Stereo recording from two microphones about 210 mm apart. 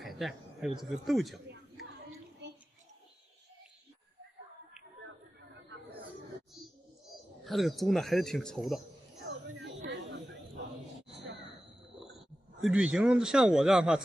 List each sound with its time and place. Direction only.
0.0 s speech: centre (ahead or behind)
7.4 s a man's voice: centre (ahead or behind)
12.0 s speech: centre (ahead or behind)